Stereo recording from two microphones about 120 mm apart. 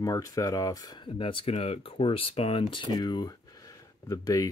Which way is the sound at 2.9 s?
35° left (ahead or behind).